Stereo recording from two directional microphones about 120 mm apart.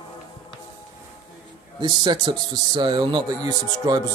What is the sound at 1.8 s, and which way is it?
A man's voice, 35° right (ahead or behind).